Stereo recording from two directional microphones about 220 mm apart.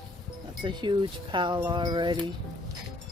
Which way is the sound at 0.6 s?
20° right (ahead or behind).